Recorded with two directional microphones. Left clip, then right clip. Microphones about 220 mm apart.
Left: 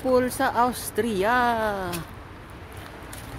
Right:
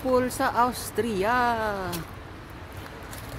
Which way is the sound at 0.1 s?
15° left (ahead or behind).